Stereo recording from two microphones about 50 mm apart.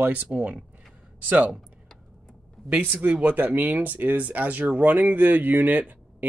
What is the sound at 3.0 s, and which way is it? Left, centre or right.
Speech, right.